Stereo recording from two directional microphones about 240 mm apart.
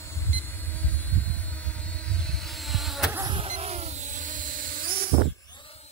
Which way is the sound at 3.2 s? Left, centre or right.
Right.